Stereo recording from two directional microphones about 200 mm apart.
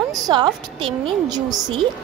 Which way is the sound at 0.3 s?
25° right (ahead or behind).